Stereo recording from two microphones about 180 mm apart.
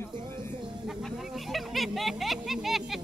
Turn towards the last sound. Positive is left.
turn(degrees=0)  # may be behind; listen again after turning